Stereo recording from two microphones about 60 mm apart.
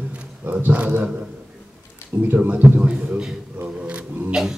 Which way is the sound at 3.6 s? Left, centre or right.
Right.